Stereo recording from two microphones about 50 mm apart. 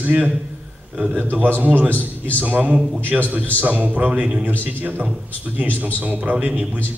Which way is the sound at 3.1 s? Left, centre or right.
Centre.